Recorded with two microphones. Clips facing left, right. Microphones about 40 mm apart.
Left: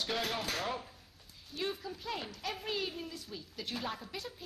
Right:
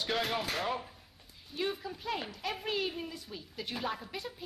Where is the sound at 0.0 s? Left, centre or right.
Centre.